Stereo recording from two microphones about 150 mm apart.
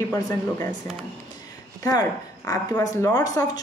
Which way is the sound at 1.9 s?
25° left (ahead or behind).